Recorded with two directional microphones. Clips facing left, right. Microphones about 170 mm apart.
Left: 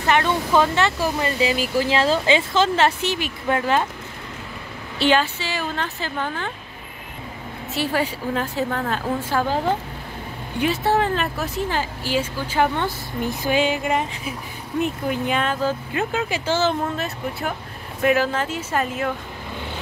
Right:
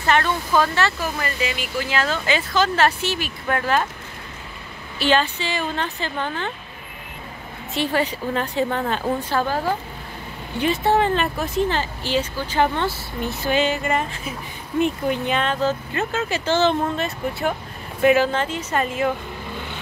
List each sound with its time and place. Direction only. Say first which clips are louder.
0.0 s speech: left 1 dB; 15° left (ahead or behind)
5.1 s a woman's voice: right 4 dB; 5° left (ahead or behind)
7.7 s a woman's voice: right 1 dB; 5° left (ahead or behind)
10.6 s a woman's voice: right 1 dB; centre (ahead or behind)